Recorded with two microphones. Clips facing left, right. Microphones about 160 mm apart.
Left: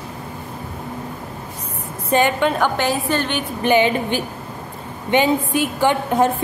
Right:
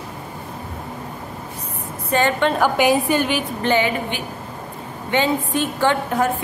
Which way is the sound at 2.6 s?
10° right (ahead or behind).